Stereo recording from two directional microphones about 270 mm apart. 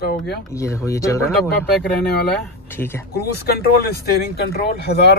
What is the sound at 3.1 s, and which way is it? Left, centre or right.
Speech, left.